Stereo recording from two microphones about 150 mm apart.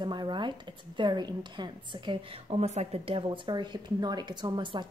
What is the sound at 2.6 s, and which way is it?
A woman's voice, 45° right (ahead or behind).